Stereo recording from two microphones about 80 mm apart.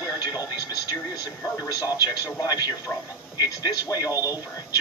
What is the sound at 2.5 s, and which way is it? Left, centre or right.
Speech, left.